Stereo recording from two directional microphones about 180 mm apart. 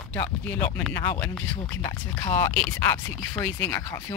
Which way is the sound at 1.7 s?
25° left (ahead or behind).